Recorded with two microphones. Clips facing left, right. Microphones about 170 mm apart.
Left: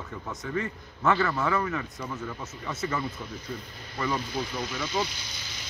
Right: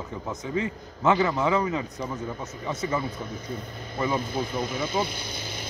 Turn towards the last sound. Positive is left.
turn(degrees=-55)  # may be behind; listen again after turning